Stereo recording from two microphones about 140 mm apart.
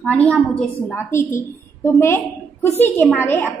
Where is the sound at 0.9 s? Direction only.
20° left (ahead or behind).